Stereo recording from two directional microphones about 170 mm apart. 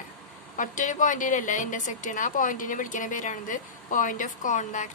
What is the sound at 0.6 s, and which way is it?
A woman's voice, 50° left (ahead or behind).